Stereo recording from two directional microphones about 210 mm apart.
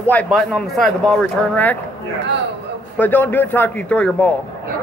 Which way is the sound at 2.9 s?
10° left (ahead or behind).